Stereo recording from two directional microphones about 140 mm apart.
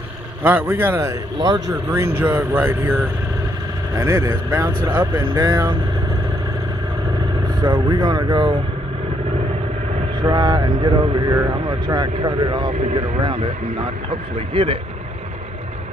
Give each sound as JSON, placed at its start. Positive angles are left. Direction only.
{"t": 0.4, "sound": "a man's voice", "side_deg": -15}
{"t": 7.6, "sound": "a man's voice", "side_deg": -35}
{"t": 10.2, "sound": "a man's voice", "side_deg": -30}